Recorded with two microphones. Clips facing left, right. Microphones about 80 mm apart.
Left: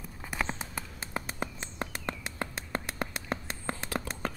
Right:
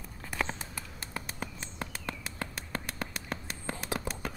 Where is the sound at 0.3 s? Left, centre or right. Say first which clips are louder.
Even; centre.